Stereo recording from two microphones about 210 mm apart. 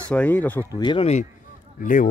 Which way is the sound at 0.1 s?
10° left (ahead or behind).